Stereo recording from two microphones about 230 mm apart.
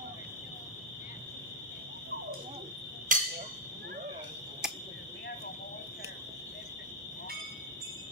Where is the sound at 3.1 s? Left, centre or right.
Right.